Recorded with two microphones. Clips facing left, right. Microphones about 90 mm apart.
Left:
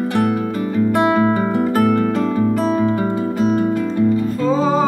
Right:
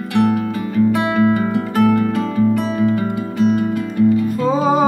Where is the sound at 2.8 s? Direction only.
30° left (ahead or behind).